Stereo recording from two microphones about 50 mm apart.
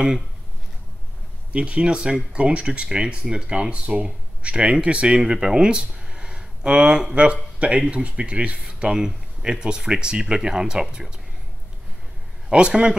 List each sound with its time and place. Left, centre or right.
1.5 s speech: right
12.4 s speech: centre